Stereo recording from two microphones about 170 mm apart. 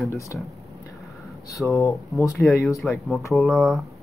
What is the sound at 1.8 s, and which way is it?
Speech, 20° left (ahead or behind).